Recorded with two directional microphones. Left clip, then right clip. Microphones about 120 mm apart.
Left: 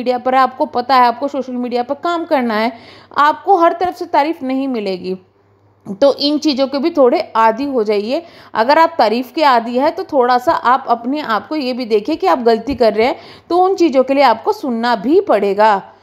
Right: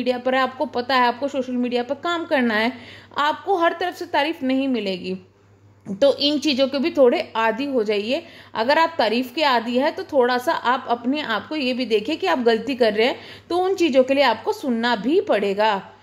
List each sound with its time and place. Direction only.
0.0 s a woman's voice: 35° left (ahead or behind)